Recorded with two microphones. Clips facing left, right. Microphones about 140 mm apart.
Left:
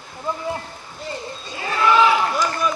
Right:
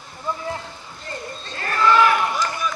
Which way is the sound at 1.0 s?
10° left (ahead or behind).